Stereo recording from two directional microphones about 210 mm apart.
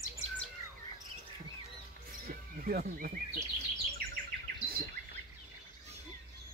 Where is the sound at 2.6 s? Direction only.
45° right (ahead or behind).